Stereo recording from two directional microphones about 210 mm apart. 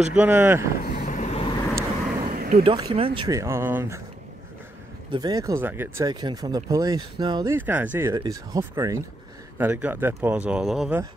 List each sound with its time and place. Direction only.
0.1 s speech: 10° right (ahead or behind)
0.8 s vehicle: 40° left (ahead or behind)
2.3 s vehicle: 45° right (ahead or behind)
2.6 s speech: 25° right (ahead or behind)
5.1 s speech: 20° right (ahead or behind)
7.5 s speech: 10° right (ahead or behind)